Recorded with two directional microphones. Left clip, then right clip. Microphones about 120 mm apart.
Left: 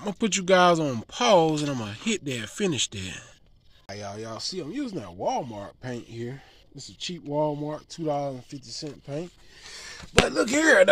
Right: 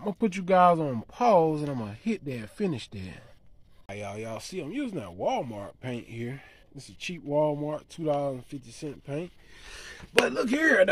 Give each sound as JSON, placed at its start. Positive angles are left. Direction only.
{"t": 0.0, "sound": "speech", "side_deg": 0}
{"t": 3.8, "sound": "speech", "side_deg": -10}
{"t": 10.6, "sound": "speech", "side_deg": 35}